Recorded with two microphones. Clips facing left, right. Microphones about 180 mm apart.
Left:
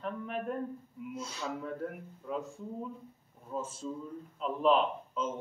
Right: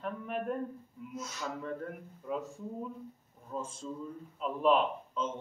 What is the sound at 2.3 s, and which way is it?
Speech, centre (ahead or behind).